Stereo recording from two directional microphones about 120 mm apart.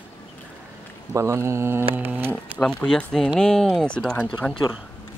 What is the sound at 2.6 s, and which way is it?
Speech, 5° left (ahead or behind).